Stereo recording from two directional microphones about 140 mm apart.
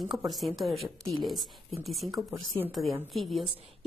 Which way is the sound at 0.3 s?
Centre (ahead or behind).